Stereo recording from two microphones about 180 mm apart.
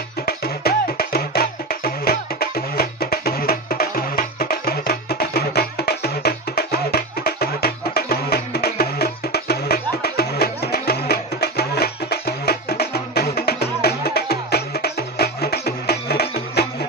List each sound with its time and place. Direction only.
0.2 s music: 60° left (ahead or behind)